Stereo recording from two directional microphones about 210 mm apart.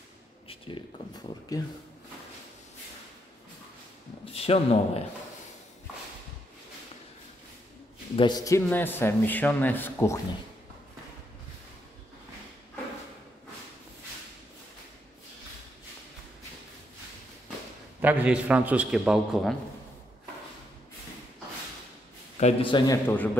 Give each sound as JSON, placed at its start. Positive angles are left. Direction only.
{"t": 0.5, "sound": "speech", "side_deg": 25}
{"t": 4.3, "sound": "a man's voice", "side_deg": 30}
{"t": 8.2, "sound": "a man's voice", "side_deg": 20}
{"t": 18.0, "sound": "a man's voice", "side_deg": -5}
{"t": 22.4, "sound": "speech", "side_deg": 25}
{"t": 23.0, "sound": "a man's voice", "side_deg": 5}